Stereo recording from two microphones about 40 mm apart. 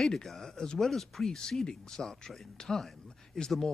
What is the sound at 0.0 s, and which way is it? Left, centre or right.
Speech, centre.